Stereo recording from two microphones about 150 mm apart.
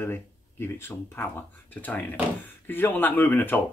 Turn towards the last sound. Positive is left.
turn(degrees=10)  # may be behind; listen again after turning